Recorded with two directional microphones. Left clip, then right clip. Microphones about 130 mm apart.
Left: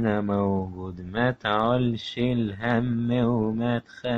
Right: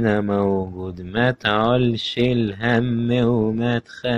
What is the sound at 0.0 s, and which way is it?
Speech, 25° right (ahead or behind).